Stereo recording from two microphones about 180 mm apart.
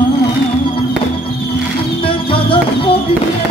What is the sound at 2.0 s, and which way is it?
Music, 30° left (ahead or behind).